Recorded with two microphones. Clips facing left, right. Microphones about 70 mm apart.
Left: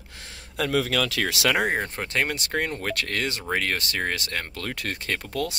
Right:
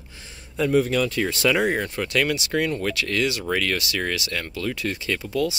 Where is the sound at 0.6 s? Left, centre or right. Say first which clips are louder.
Right 4 dB; left.